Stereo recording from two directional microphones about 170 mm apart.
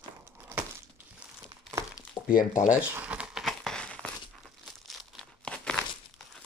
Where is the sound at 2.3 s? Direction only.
55° left (ahead or behind).